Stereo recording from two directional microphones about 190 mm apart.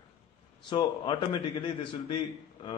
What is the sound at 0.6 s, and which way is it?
A man's voice, 25° left (ahead or behind).